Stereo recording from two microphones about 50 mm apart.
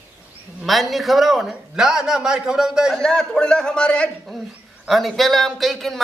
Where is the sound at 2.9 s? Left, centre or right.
Centre.